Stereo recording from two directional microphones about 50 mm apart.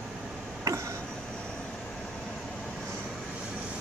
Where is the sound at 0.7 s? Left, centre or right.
Right.